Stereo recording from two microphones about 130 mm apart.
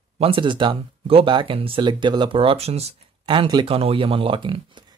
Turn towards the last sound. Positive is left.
turn(degrees=-35)  # may be behind; listen again after turning